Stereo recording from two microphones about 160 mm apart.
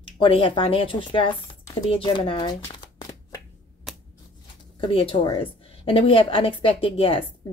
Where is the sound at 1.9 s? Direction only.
35° left (ahead or behind).